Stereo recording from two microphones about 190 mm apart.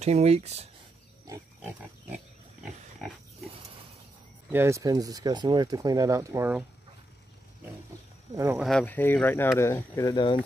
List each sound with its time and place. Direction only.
0.0 s speech: 35° right (ahead or behind)
1.2 s pig: 15° right (ahead or behind)
4.5 s speech: 15° right (ahead or behind)
8.5 s speech: 5° left (ahead or behind); by 10.4 s 25° left (ahead or behind)